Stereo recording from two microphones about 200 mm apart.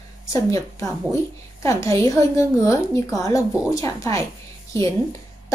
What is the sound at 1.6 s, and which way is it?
A woman's voice, 15° left (ahead or behind).